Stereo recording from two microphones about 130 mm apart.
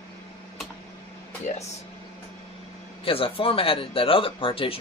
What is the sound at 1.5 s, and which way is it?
Speech, 70° left (ahead or behind).